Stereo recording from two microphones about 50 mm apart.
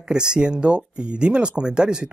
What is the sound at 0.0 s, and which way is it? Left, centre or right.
Speech, centre.